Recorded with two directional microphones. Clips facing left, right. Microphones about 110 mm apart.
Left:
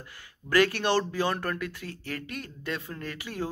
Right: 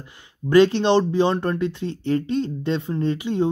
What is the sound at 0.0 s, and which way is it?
Speech, 20° right (ahead or behind).